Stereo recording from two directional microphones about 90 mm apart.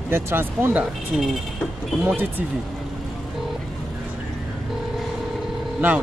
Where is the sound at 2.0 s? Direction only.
25° right (ahead or behind).